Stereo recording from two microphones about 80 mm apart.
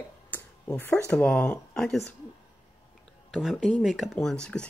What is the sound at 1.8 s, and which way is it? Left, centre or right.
Speech, centre.